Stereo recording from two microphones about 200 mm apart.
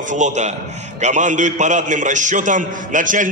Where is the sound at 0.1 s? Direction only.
35° right (ahead or behind).